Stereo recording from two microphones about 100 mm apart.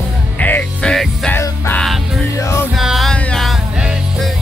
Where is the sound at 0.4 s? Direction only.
15° left (ahead or behind).